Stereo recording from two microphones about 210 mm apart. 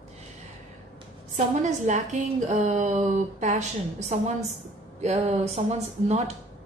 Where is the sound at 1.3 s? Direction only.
35° right (ahead or behind).